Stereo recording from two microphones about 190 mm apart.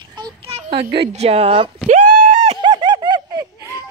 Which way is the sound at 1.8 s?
45° right (ahead or behind).